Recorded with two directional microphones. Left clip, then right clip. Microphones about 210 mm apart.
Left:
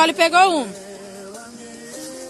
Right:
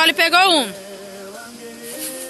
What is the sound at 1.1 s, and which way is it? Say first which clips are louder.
Music: right 2 dB; 25° right (ahead or behind).